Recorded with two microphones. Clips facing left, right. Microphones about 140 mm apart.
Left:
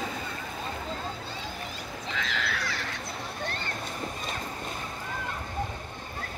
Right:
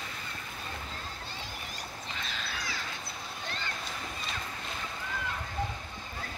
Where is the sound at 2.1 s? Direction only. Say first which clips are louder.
Left 9 dB; 90° left; by 2.8 s 70° left (ahead or behind).